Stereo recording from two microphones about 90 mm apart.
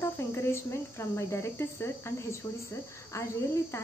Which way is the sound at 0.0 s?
30° left (ahead or behind).